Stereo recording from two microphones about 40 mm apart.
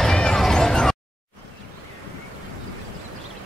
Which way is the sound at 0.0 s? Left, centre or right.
Centre.